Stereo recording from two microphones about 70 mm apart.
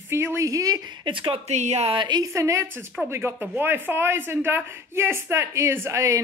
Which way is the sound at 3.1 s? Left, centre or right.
Right.